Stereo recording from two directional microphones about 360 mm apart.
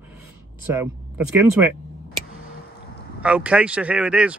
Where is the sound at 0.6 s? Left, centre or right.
Centre.